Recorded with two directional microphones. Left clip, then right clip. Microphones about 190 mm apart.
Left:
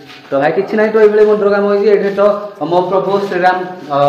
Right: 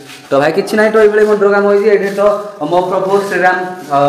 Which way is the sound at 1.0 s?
10° right (ahead or behind).